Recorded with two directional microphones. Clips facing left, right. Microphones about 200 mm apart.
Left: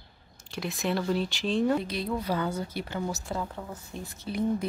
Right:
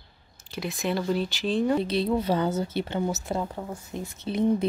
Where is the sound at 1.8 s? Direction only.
30° right (ahead or behind).